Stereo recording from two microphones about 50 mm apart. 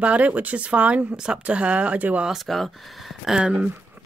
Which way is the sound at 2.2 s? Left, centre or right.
Centre.